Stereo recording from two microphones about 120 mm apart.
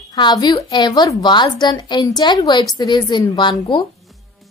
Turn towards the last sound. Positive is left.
turn(degrees=40)  # may be behind; listen again after turning